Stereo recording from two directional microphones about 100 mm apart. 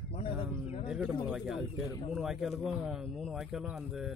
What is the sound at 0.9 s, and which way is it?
Speech, 15° right (ahead or behind).